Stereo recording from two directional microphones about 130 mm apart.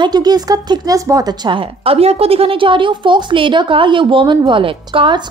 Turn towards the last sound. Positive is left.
turn(degrees=-40)  # may be behind; listen again after turning